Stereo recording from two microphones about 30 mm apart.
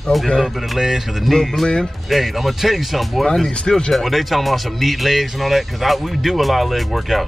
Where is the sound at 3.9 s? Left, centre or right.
Centre.